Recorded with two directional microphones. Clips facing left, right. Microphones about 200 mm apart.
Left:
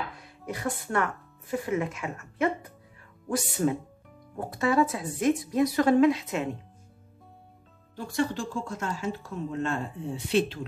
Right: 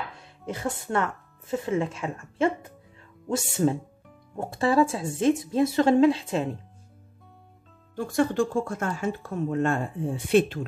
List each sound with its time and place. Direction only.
0.2 s a woman's voice: 25° right (ahead or behind)
7.9 s speech: 50° right (ahead or behind)